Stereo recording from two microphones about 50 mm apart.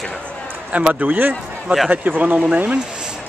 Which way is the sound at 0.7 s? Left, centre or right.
Right.